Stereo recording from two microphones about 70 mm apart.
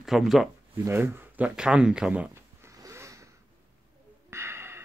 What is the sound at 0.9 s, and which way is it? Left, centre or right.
Speech, right.